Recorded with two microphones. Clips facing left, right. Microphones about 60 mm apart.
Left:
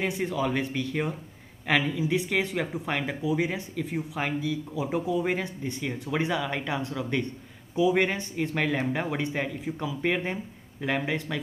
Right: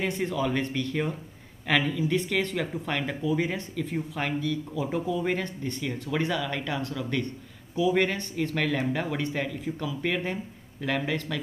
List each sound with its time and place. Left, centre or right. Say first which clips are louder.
0.0 s speech: even; centre